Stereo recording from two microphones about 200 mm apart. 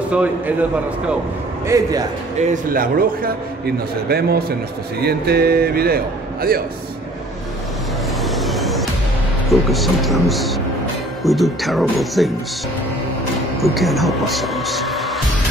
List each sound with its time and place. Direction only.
0.1 s a man's voice: 5° right (ahead or behind)
1.7 s a man's voice: 20° right (ahead or behind)
2.4 s a man's voice: 40° right (ahead or behind)
8.2 s vehicle: centre (ahead or behind)
9.5 s speech: centre (ahead or behind)
13.6 s speech: centre (ahead or behind)